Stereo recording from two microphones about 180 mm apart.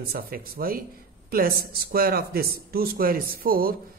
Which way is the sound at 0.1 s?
55° right (ahead or behind).